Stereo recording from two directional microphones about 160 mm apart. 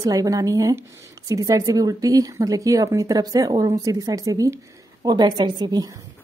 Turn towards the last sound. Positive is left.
turn(degrees=-25)  # may be behind; listen again after turning